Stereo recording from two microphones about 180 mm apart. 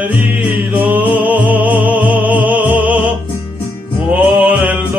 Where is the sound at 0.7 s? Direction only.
10° right (ahead or behind).